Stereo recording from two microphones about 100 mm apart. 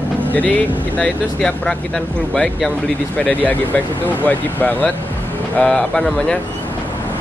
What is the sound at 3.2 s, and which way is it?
Speech, 15° left (ahead or behind).